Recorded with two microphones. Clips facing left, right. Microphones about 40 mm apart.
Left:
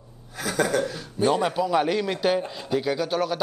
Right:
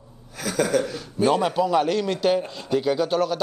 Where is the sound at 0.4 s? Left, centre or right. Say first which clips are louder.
Right 1 dB; centre.